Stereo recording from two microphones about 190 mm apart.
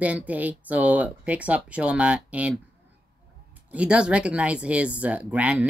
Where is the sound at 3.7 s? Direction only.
5° right (ahead or behind).